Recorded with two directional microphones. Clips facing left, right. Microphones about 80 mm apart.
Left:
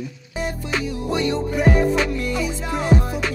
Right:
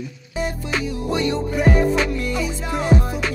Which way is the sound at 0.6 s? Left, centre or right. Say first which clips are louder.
Even; centre.